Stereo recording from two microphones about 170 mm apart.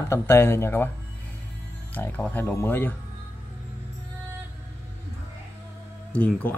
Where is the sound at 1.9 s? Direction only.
10° left (ahead or behind).